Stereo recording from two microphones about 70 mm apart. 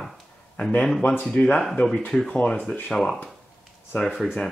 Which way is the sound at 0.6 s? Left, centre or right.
Centre.